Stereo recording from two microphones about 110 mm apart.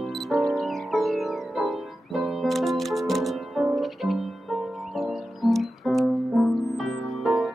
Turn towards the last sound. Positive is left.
turn(degrees=0)  # may be behind; listen again after turning